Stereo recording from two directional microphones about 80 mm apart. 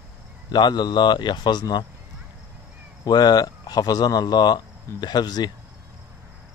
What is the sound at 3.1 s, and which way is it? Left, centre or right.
Speech, left.